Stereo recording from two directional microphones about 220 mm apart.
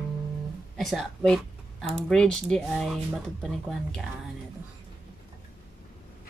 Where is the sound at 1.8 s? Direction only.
5° left (ahead or behind).